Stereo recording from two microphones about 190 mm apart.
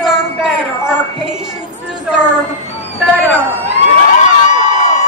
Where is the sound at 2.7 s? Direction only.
10° left (ahead or behind).